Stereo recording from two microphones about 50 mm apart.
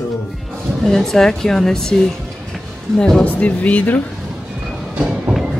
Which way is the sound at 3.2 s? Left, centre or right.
Left.